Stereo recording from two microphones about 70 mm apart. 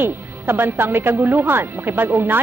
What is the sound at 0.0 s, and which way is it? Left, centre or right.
A woman's voice, right.